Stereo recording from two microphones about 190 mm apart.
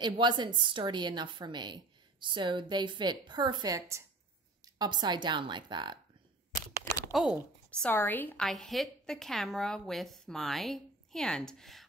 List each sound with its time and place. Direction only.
0.0 s a woman's voice: 25° right (ahead or behind)
7.1 s a woman's voice: centre (ahead or behind)